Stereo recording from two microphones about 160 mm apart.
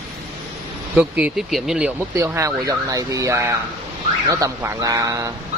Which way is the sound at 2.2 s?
15° right (ahead or behind).